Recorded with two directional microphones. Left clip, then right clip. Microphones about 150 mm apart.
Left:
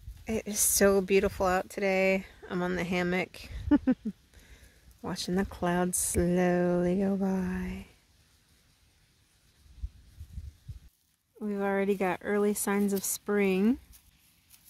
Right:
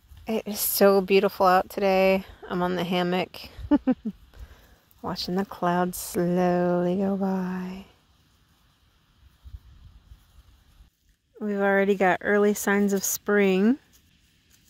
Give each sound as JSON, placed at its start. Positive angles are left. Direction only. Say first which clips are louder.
{"t": 0.2, "sound": "a woman's voice", "louder": "right 3 dB", "side_deg": -10}
{"t": 3.6, "sound": "speech", "louder": "right 3 dB", "side_deg": 0}
{"t": 5.0, "sound": "speech", "louder": "right 4 dB", "side_deg": 0}
{"t": 11.3, "sound": "speech", "louder": "right 8 dB", "side_deg": -30}